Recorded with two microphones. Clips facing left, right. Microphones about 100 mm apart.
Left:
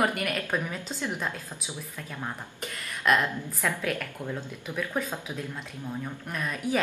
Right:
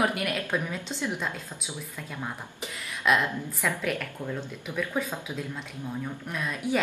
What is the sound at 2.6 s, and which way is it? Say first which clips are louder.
A woman's voice: even; 5° right (ahead or behind).